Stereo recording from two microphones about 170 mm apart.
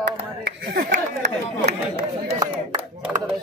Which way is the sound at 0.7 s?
55° right (ahead or behind).